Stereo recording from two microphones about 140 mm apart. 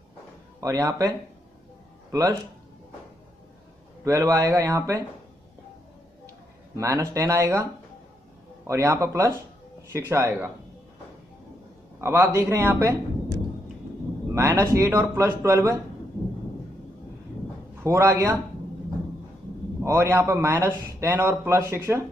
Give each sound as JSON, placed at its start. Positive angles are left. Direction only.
{"t": 0.6, "sound": "a man's voice", "side_deg": -20}
{"t": 4.0, "sound": "a man's voice", "side_deg": -25}
{"t": 6.8, "sound": "a man's voice", "side_deg": -20}
{"t": 8.6, "sound": "a man's voice", "side_deg": -20}
{"t": 12.0, "sound": "a man's voice", "side_deg": -20}
{"t": 14.3, "sound": "a man's voice", "side_deg": -20}
{"t": 17.8, "sound": "a man's voice", "side_deg": -20}
{"t": 19.8, "sound": "a man's voice", "side_deg": -20}